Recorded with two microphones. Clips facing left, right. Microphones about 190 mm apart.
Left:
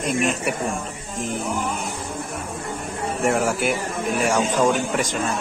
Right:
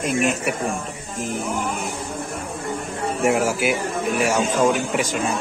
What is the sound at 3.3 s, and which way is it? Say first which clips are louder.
A man's voice: right 1 dB; 5° right (ahead or behind).